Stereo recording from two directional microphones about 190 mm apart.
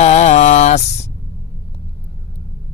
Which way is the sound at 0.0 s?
40° left (ahead or behind).